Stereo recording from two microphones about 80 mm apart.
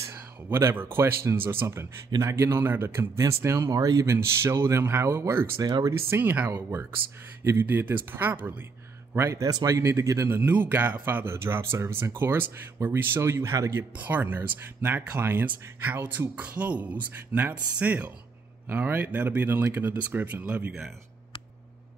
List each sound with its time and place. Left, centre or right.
0.0 s speech: right
3.2 s speech: right
5.6 s speech: right
5.9 s speech: right
9.1 s speech: right
10.3 s speech: right
13.9 s speech: right